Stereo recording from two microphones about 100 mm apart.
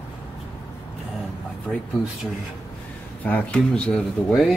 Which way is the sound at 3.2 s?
15° left (ahead or behind).